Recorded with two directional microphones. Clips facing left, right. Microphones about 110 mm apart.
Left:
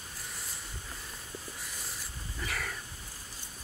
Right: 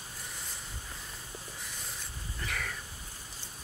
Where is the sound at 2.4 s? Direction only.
Centre (ahead or behind).